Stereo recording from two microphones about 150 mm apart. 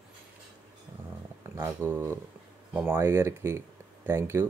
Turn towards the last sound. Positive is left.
turn(degrees=-15)  # may be behind; listen again after turning